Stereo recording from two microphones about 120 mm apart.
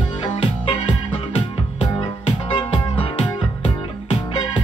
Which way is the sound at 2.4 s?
50° left (ahead or behind).